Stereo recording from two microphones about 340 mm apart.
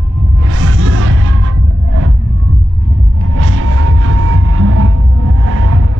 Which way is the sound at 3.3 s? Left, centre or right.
Right.